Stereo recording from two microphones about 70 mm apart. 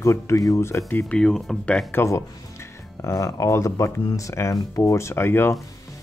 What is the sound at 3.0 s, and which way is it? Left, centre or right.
Speech, left.